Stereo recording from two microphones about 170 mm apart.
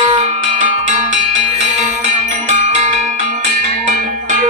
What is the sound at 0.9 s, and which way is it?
Music, 45° right (ahead or behind).